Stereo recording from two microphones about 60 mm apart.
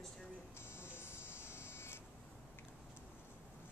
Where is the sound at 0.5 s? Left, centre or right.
Left.